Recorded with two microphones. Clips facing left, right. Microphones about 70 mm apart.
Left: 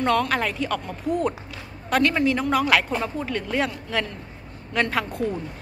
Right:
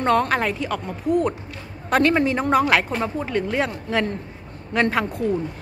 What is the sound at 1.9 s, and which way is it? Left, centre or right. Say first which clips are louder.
A man's voice: right 2 dB; right.